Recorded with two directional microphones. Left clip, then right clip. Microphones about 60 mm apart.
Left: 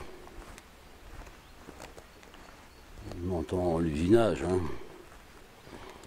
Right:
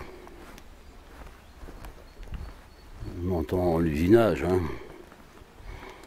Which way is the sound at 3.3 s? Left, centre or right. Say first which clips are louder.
Right 4 dB; centre.